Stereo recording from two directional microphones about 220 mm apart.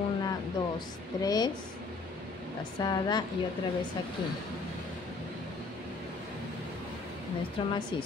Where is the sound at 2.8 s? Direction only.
20° left (ahead or behind).